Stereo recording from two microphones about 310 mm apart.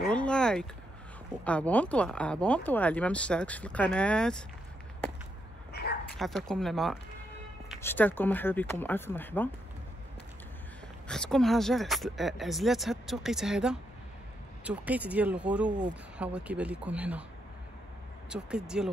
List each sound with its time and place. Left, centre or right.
0.0 s a sound: centre
1.4 s speech: centre
5.7 s a sound: left
6.1 s speech: centre
11.1 s speech: centre
18.3 s speech: centre